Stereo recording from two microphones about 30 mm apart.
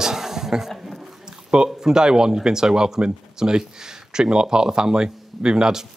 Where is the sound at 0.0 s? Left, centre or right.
Centre.